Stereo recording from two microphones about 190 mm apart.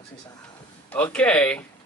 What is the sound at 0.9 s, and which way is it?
Speech, 5° left (ahead or behind).